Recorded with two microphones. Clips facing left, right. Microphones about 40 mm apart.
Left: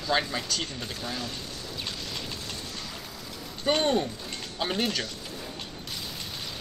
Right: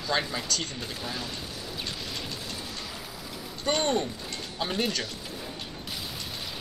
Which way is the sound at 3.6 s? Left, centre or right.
Centre.